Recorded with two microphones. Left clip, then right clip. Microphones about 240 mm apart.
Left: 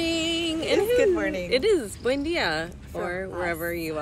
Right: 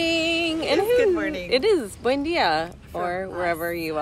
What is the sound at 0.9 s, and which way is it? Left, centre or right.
Speech, centre.